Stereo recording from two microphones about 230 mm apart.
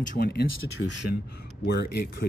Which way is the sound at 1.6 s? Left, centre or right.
Left.